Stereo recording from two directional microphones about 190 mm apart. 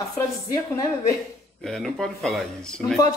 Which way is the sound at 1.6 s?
Centre (ahead or behind).